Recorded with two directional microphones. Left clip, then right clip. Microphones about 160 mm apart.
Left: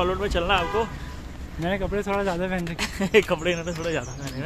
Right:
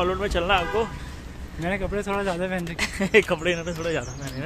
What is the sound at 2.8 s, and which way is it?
Speech, 15° right (ahead or behind).